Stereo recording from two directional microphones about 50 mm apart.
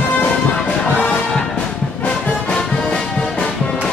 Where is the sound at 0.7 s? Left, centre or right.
Centre.